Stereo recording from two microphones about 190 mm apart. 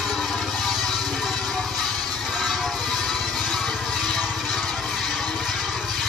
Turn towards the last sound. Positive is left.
turn(degrees=0)  # may be behind; listen again after turning